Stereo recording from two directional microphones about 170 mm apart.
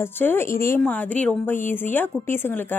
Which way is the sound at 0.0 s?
10° left (ahead or behind).